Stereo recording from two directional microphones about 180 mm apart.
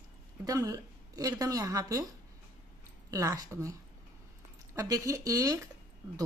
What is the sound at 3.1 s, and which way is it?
Speech, 20° right (ahead or behind).